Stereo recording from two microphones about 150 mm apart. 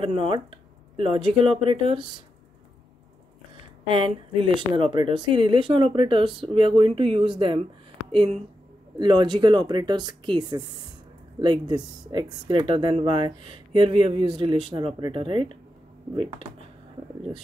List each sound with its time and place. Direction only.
0.0 s speech: 40° right (ahead or behind)
3.8 s speech: 35° right (ahead or behind)
8.9 s speech: 30° right (ahead or behind)